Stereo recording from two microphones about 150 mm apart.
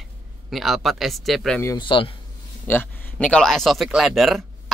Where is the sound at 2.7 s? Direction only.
15° left (ahead or behind).